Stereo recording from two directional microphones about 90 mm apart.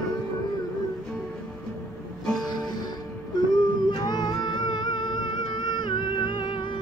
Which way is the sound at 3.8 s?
50° left (ahead or behind).